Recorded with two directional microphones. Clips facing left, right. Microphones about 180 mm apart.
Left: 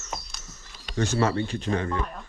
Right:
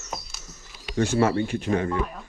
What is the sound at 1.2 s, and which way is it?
Speech, 25° right (ahead or behind).